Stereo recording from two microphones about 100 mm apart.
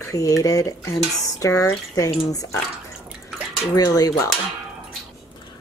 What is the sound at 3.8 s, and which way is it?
Speech, 40° left (ahead or behind).